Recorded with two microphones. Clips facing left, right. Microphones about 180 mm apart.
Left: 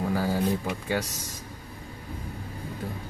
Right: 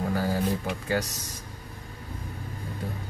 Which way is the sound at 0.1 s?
5° left (ahead or behind).